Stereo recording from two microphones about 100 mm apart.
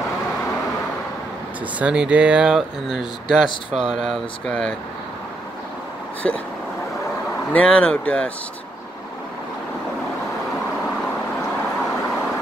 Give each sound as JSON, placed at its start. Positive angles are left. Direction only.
{"t": 1.8, "sound": "speech", "side_deg": -10}
{"t": 7.5, "sound": "speech", "side_deg": 10}